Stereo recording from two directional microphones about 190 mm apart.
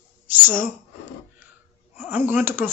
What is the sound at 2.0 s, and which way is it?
Speech, 10° right (ahead or behind).